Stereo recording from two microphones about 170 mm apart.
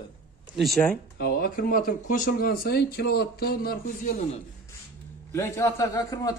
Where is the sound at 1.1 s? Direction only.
60° left (ahead or behind).